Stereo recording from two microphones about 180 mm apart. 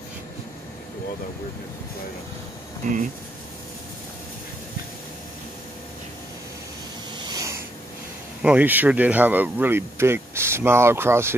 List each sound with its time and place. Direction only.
2.8 s speech: 45° right (ahead or behind)
7.2 s a sound: 20° right (ahead or behind)
8.4 s speech: 10° right (ahead or behind)